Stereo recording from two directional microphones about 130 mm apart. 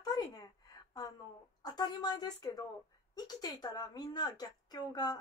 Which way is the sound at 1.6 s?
30° left (ahead or behind).